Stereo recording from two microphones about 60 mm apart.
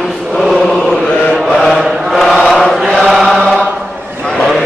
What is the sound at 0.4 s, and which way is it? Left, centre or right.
Chant, centre.